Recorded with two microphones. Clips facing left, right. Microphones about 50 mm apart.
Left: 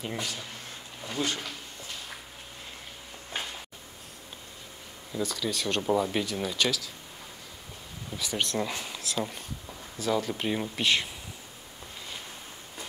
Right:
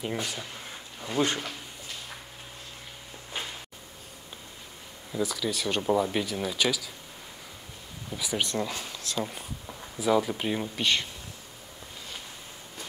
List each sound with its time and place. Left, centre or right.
0.2 s speech: centre
1.0 s speech: right
5.1 s speech: centre
8.1 s speech: centre
8.5 s speech: centre